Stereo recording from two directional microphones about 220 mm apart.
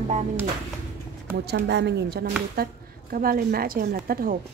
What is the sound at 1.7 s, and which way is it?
A woman's voice, 50° right (ahead or behind).